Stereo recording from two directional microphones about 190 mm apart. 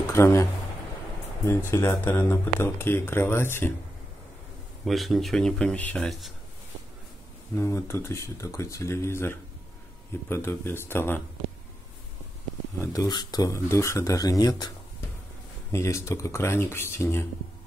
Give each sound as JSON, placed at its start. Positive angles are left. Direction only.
{"t": 0.1, "sound": "speech", "side_deg": 15}
{"t": 4.8, "sound": "speech", "side_deg": 0}
{"t": 7.5, "sound": "speech", "side_deg": 15}
{"t": 12.8, "sound": "speech", "side_deg": 20}
{"t": 15.7, "sound": "speech", "side_deg": 15}